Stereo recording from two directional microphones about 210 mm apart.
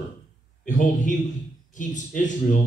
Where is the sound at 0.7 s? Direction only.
35° left (ahead or behind).